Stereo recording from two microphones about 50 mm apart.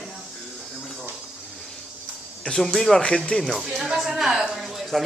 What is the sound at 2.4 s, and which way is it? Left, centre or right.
Speech, centre.